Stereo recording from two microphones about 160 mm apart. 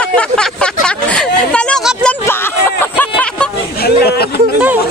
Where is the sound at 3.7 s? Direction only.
80° left.